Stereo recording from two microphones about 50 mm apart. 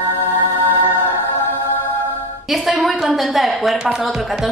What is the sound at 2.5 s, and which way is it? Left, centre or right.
A woman's voice, centre.